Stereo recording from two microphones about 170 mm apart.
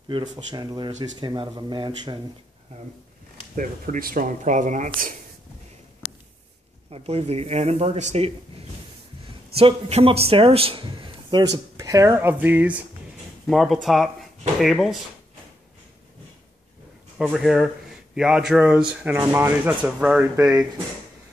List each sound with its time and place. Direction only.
0.5 s a man's voice: 25° right (ahead or behind)
3.5 s speech: 50° right (ahead or behind)
6.9 s speech: 35° right (ahead or behind)
9.6 s a man's voice: 35° right (ahead or behind); by 15.0 s centre (ahead or behind)
17.2 s speech: centre (ahead or behind)